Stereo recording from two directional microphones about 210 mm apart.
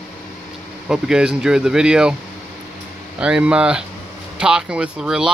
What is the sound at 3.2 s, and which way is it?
Speech, 5° right (ahead or behind).